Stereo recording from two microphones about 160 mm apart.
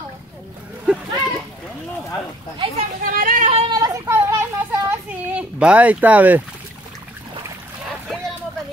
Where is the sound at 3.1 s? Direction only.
60° right (ahead or behind).